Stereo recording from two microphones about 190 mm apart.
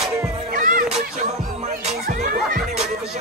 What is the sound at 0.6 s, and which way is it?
Music, 45° right (ahead or behind).